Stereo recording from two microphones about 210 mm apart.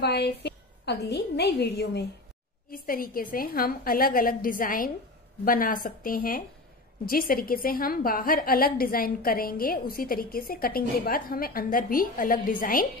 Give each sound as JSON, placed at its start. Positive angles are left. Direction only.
{"t": 0.0, "sound": "a woman's voice", "side_deg": 50}